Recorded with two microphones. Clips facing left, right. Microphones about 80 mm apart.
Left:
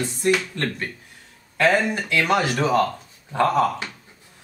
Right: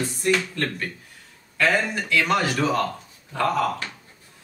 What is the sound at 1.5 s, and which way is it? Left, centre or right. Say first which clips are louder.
Speech: left 3 dB; left.